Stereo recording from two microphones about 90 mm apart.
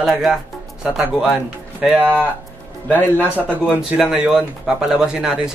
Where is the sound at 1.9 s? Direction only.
20° right (ahead or behind).